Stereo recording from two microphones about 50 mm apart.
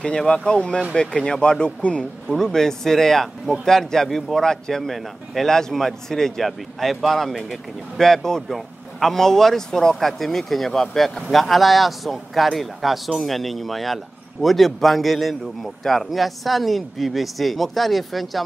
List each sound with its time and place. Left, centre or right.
0.3 s speech: left
2.2 s speech: centre